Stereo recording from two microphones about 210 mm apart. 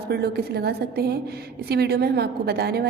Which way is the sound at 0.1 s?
50° right (ahead or behind).